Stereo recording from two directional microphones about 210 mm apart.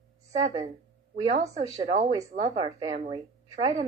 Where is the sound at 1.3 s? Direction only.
30° right (ahead or behind).